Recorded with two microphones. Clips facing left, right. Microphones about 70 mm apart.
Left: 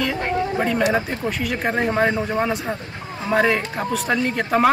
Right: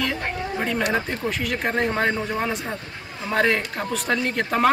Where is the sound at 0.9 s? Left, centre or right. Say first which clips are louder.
Left 2 dB; centre.